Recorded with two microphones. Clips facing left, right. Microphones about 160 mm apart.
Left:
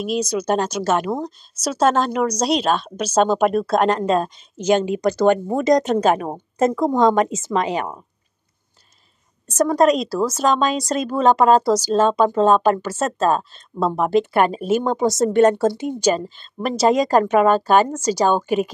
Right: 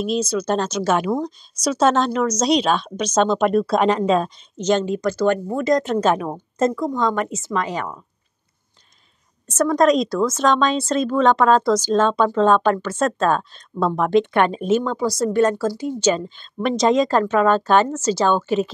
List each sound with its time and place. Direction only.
0.0 s a woman's voice: 10° left (ahead or behind)
9.5 s a woman's voice: 10° left (ahead or behind)
14.9 s a woman's voice: 20° left (ahead or behind)
16.0 s a woman's voice: 5° left (ahead or behind)